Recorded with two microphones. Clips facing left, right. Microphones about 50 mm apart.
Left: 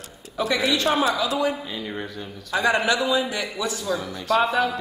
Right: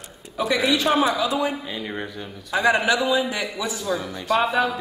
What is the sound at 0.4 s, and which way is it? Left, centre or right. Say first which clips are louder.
Speech: right 1 dB; centre.